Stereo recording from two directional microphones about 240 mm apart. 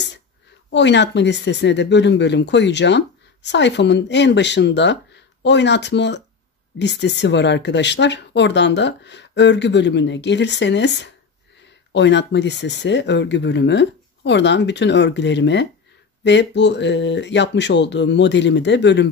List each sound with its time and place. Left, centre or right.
0.7 s speech: left